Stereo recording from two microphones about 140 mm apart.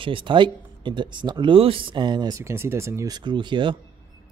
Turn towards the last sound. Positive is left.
turn(degrees=-35)  # may be behind; listen again after turning